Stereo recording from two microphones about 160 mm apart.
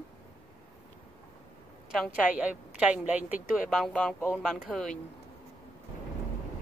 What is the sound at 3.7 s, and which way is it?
Speech, 5° left (ahead or behind).